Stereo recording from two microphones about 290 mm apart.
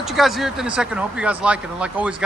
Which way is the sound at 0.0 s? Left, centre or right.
Centre.